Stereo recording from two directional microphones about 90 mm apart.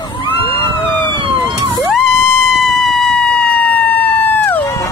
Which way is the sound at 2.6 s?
5° left (ahead or behind).